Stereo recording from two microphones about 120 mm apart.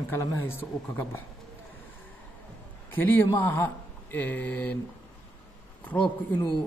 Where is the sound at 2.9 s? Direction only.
20° left (ahead or behind).